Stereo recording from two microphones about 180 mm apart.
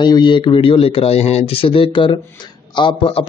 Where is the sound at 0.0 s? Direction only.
25° left (ahead or behind).